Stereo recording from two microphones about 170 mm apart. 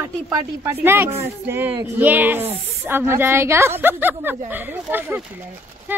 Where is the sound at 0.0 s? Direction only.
20° right (ahead or behind).